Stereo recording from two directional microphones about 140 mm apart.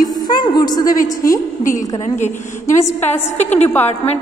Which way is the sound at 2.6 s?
20° left (ahead or behind).